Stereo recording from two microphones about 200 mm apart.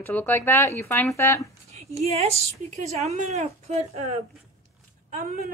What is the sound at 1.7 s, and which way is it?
A woman's voice, 35° right (ahead or behind).